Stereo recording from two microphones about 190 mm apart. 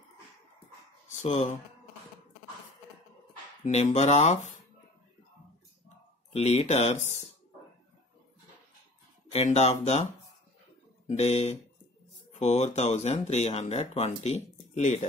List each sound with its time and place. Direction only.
1.1 s speech: 35° left (ahead or behind)
3.6 s speech: 35° left (ahead or behind)
6.3 s speech: 35° left (ahead or behind)
9.3 s speech: 35° left (ahead or behind)
11.1 s speech: 35° left (ahead or behind)